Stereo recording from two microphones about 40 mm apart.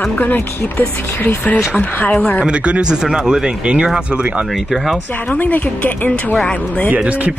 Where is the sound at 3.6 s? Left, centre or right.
Right.